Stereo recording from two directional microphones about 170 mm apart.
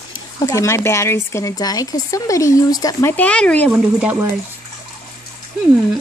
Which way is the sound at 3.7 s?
10° right (ahead or behind).